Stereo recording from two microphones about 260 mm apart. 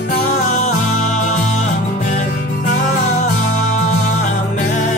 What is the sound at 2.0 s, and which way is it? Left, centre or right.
Music, left.